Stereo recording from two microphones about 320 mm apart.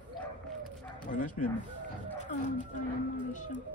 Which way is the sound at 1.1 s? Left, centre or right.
Left.